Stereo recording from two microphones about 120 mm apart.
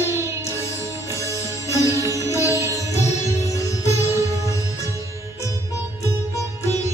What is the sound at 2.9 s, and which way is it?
Music, 25° left (ahead or behind).